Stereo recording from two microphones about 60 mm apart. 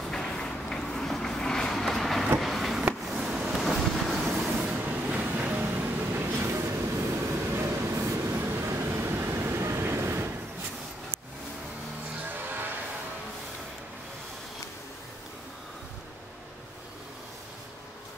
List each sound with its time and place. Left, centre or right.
0.1 s vehicle: centre
3.1 s waves: centre
4.6 s vehicle: right
6.1 s vehicle: right
6.6 s train: right
12.3 s basketball bounce: right